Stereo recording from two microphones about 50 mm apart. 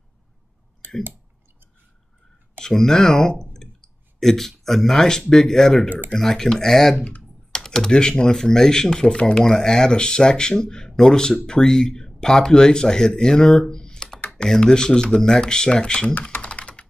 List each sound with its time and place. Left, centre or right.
2.6 s speech: centre
7.0 s speech: left
7.5 s speech: centre
16.2 s speech: left
16.4 s computer keyboard: left